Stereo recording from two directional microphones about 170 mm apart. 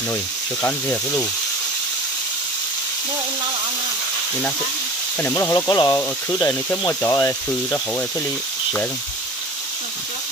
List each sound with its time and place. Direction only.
0.1 s speech: 15° left (ahead or behind)
5.2 s speech: 15° left (ahead or behind)